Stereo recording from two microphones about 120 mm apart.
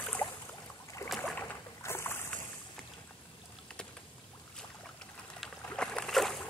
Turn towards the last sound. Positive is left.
turn(degrees=0)  # may be behind; listen again after turning